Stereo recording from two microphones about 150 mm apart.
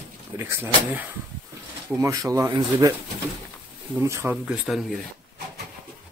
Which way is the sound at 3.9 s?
15° right (ahead or behind).